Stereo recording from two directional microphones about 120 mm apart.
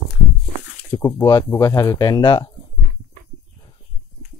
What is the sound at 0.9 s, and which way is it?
Speech, 35° left (ahead or behind).